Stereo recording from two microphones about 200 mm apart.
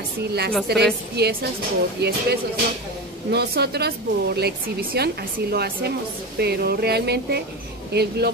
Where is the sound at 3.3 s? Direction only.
55° right (ahead or behind).